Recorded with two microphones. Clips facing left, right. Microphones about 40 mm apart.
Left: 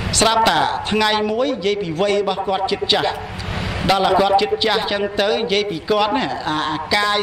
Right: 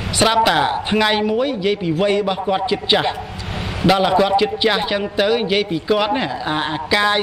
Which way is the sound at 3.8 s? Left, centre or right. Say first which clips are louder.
Right 1 dB; centre.